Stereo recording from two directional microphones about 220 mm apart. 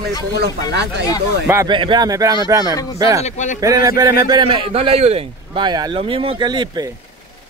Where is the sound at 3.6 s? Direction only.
15° right (ahead or behind).